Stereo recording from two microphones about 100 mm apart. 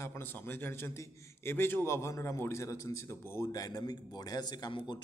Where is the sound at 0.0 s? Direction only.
25° left (ahead or behind).